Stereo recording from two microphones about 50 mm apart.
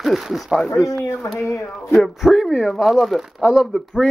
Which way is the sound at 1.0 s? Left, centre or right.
Left.